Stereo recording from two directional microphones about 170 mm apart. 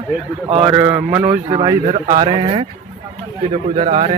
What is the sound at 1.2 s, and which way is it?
A man's voice, 25° right (ahead or behind).